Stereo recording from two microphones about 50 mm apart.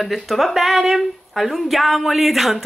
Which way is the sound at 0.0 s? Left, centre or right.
Centre.